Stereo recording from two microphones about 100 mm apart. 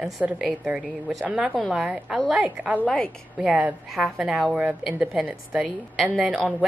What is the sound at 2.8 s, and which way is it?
Speech, 10° left (ahead or behind).